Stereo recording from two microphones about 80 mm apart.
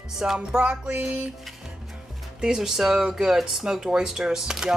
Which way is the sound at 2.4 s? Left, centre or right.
Centre.